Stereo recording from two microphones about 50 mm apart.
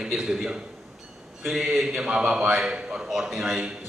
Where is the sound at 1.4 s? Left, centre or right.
Centre.